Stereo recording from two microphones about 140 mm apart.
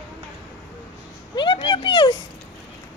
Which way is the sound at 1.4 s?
35° left (ahead or behind).